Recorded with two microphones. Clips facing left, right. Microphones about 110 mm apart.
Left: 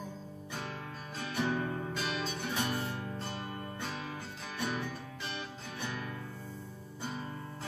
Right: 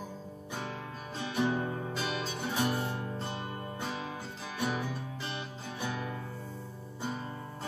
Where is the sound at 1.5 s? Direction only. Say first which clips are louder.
Right 1 dB; 20° right (ahead or behind).